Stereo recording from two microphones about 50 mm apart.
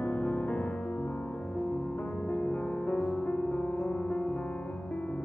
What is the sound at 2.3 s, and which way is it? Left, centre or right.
Music, left.